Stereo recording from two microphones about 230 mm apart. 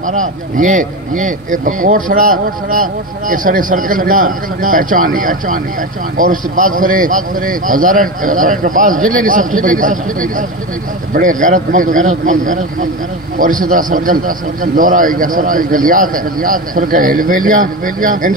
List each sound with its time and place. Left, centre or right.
0.0 s speech: right